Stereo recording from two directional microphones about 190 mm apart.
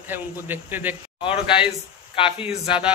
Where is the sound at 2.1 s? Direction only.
30° left (ahead or behind).